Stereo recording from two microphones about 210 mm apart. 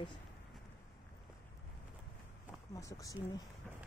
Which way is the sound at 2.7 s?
15° left (ahead or behind).